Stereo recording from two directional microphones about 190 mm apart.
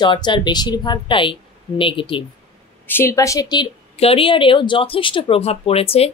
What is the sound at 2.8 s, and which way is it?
A woman's voice, 10° left (ahead or behind).